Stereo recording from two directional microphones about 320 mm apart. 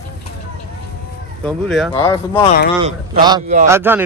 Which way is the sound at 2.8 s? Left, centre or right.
Centre.